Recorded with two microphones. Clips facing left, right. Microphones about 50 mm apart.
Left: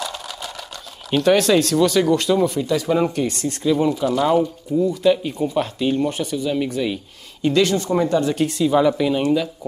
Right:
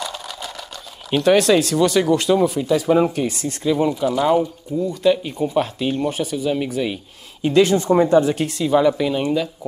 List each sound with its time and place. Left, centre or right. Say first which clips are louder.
0.0 s sewing machine: even; centre
1.1 s speech: right 1 dB; centre; by 8.2 s right
8.2 s speech: right 2 dB; centre
8.5 s speech: even; centre